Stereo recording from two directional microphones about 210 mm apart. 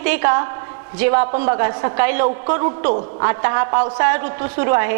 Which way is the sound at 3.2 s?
20° right (ahead or behind).